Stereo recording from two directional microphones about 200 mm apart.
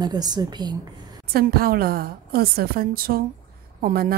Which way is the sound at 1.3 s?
50° right (ahead or behind).